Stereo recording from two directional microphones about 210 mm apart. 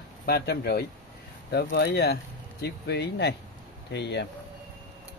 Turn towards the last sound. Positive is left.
turn(degrees=55)  # may be behind; listen again after turning